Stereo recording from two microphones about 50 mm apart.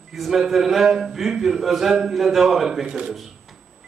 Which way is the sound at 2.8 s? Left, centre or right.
Centre.